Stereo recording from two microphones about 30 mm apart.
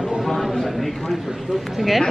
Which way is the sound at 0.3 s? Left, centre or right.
Centre.